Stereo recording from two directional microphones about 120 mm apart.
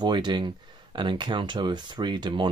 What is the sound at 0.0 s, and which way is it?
Speech, 40° right (ahead or behind).